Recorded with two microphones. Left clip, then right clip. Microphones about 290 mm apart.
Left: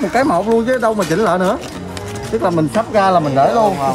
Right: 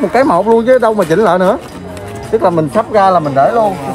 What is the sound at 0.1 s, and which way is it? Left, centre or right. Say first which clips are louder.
Speech: right 5 dB; centre.